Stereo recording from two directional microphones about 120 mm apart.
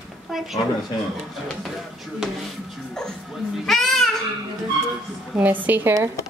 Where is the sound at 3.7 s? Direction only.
Centre (ahead or behind).